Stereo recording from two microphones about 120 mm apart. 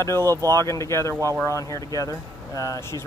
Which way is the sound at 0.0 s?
20° left (ahead or behind).